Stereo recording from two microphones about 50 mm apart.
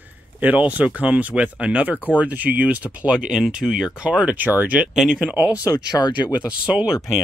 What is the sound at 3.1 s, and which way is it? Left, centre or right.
Speech, centre.